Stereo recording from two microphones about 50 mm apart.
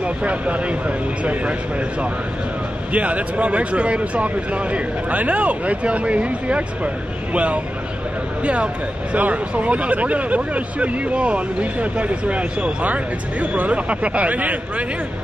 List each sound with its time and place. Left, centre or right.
0.0 s speech: right
2.9 s speech: right
9.1 s speech: right